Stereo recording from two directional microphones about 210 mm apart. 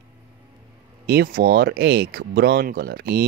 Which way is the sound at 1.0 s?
45° right (ahead or behind).